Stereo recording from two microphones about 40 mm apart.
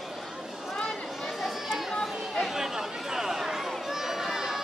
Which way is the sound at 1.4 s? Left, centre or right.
Centre.